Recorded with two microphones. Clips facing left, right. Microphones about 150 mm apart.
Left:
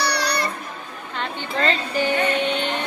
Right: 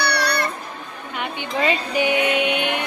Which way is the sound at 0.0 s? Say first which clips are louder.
Right 1 dB; 60° right (ahead or behind).